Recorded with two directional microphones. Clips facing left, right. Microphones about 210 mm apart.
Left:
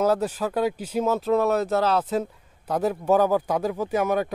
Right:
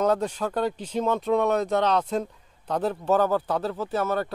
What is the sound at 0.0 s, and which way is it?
Speech, 5° left (ahead or behind).